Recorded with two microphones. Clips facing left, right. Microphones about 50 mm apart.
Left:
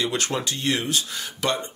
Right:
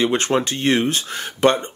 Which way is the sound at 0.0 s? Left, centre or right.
Right.